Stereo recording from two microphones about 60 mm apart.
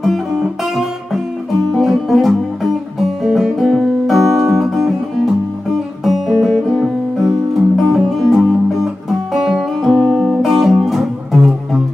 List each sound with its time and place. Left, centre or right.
0.0 s music: centre